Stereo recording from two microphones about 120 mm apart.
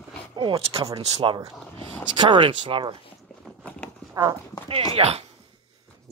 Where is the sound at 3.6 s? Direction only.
10° left (ahead or behind).